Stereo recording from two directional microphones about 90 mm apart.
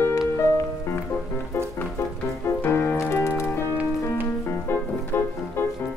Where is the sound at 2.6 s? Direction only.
30° left (ahead or behind).